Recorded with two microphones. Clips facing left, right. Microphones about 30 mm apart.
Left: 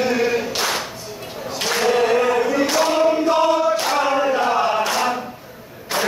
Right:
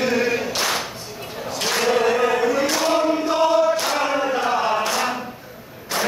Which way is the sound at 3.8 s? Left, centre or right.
Centre.